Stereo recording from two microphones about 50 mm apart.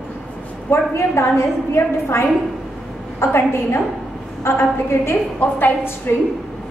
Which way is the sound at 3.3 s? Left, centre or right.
Left.